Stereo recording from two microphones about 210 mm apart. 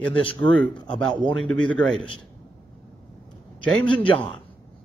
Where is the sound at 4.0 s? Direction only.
25° left (ahead or behind).